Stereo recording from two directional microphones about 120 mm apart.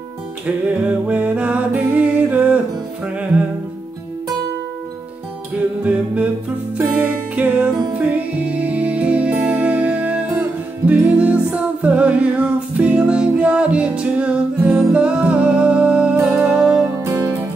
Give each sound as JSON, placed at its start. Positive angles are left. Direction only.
{"t": 0.8, "sound": "music", "side_deg": -10}
{"t": 5.9, "sound": "a capella", "side_deg": -10}
{"t": 6.8, "sound": "music", "side_deg": -15}
{"t": 16.8, "sound": "music", "side_deg": -20}